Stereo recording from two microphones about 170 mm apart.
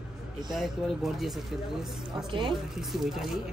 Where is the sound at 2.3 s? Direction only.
30° right (ahead or behind).